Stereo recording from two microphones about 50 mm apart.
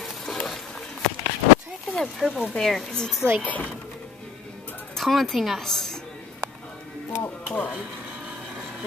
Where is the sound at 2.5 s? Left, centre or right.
Centre.